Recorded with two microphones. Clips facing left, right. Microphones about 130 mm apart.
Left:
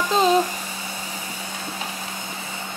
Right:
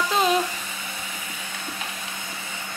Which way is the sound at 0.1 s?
30° left (ahead or behind).